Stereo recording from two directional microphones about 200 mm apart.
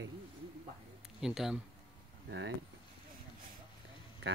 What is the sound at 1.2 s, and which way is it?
Speech, centre (ahead or behind).